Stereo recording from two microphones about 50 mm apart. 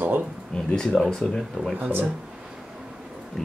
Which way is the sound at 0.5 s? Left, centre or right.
Centre.